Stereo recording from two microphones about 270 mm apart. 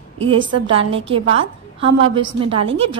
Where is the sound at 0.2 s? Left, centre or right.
Centre.